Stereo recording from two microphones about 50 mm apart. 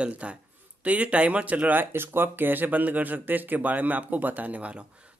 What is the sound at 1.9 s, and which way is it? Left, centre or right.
Speech, right.